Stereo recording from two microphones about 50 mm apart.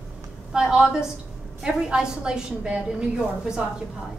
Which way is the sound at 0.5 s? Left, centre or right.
Centre.